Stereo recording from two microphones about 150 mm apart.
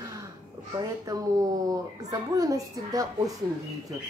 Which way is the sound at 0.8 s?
25° right (ahead or behind).